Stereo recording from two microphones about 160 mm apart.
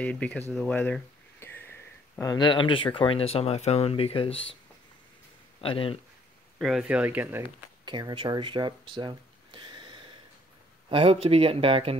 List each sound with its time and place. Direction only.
0.0 s speech: 10° left (ahead or behind)
0.5 s a sound: 5° left (ahead or behind)
2.3 s speech: 30° left (ahead or behind)
5.6 s speech: 35° left (ahead or behind)
6.6 s speech: centre (ahead or behind)
7.8 s speech: 30° right (ahead or behind)